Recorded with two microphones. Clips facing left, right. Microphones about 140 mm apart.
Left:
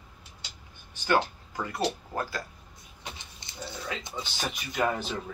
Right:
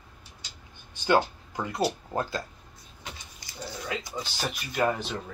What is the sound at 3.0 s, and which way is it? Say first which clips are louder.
Vehicle: even; 25° left (ahead or behind).